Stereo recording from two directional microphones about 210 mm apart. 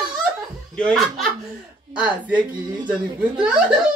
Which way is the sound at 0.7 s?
5° left (ahead or behind).